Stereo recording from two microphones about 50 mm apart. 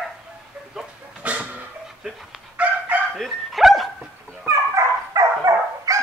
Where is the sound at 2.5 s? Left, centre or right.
Right.